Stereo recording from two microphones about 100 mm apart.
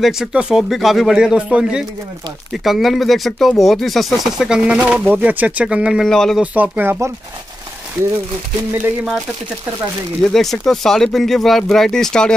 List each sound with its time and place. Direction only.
0.0 s speech: 5° right (ahead or behind)
6.0 s speech: 5° left (ahead or behind)
6.4 s speech: 15° right (ahead or behind)
10.2 s speech: 5° left (ahead or behind)